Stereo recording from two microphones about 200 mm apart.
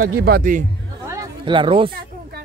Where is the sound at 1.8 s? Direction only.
50° right (ahead or behind).